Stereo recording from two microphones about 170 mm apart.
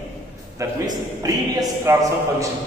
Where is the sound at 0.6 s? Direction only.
20° right (ahead or behind).